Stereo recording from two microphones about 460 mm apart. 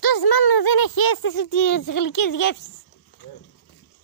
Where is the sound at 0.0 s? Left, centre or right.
Left.